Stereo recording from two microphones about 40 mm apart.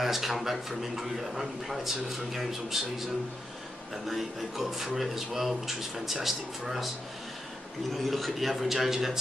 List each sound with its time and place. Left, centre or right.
0.0 s a man's voice: centre
4.1 s speech: centre
7.9 s speech: centre